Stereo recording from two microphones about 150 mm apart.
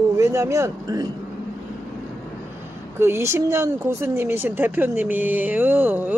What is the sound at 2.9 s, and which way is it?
Speech, 15° right (ahead or behind).